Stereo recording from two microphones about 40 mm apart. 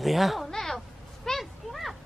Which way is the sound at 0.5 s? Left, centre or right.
Centre.